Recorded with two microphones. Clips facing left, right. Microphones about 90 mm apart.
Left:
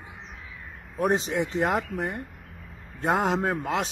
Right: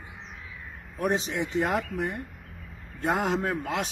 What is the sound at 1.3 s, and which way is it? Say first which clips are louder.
Speech: left 2 dB; centre (ahead or behind).